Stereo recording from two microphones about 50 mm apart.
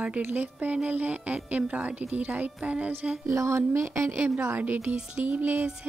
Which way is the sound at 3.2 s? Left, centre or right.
Right.